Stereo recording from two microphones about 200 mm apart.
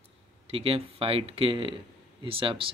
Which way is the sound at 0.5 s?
30° right (ahead or behind).